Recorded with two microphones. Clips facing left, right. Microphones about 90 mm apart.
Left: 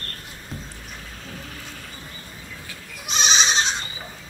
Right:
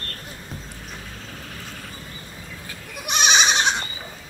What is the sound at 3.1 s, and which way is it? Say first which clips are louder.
Goat: right 3 dB; 60° right (ahead or behind).